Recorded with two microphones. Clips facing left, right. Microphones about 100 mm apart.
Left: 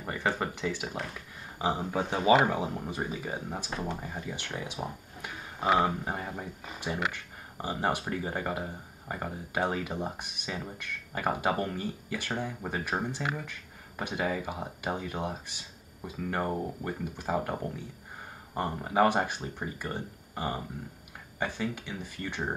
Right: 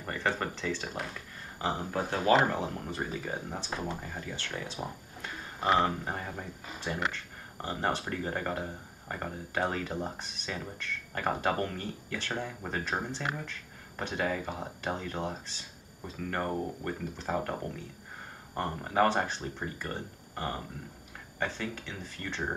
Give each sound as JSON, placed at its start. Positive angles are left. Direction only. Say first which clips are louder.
{"t": 0.0, "sound": "speech", "louder": "left 1 dB", "side_deg": 10}
{"t": 1.8, "sound": "speech", "louder": "left 2 dB", "side_deg": 0}
{"t": 4.3, "sound": "speech", "louder": "even", "side_deg": 15}